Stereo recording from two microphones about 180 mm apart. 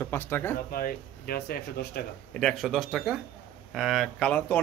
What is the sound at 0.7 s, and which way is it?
Speech, 55° left (ahead or behind).